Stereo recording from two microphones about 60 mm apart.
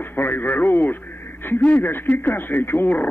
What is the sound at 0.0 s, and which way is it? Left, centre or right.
Speech, left.